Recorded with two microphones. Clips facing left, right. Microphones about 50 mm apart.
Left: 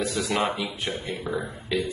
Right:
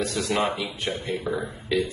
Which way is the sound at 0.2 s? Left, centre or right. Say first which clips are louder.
Right 1 dB; centre.